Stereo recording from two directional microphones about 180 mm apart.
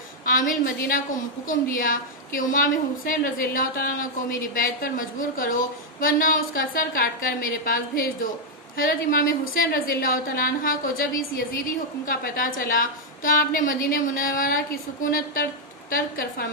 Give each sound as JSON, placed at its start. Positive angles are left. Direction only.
{"t": 0.2, "sound": "a woman's voice", "side_deg": 50}